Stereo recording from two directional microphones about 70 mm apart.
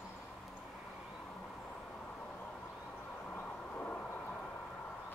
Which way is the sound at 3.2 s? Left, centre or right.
Centre.